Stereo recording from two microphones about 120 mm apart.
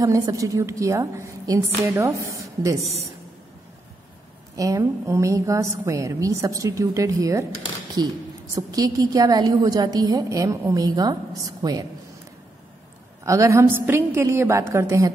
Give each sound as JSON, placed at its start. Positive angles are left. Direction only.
{"t": 0.0, "sound": "a woman's voice", "side_deg": -30}
{"t": 4.6, "sound": "a woman's voice", "side_deg": -25}
{"t": 13.2, "sound": "a woman's voice", "side_deg": -25}